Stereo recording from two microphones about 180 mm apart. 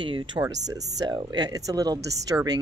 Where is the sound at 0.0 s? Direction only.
25° right (ahead or behind).